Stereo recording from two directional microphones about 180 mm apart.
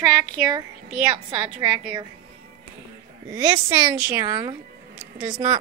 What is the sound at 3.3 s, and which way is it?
Speech, 15° right (ahead or behind).